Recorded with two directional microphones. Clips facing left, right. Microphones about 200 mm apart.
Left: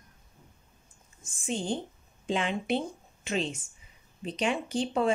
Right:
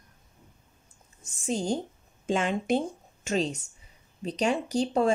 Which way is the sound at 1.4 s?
40° right (ahead or behind).